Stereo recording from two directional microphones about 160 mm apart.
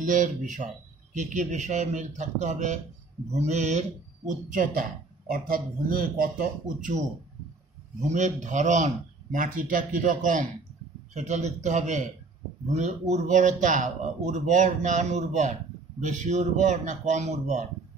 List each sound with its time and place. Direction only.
0.0 s speech: 55° right (ahead or behind)
4.5 s a man's voice: 55° right (ahead or behind)
8.1 s a man's voice: 50° right (ahead or behind)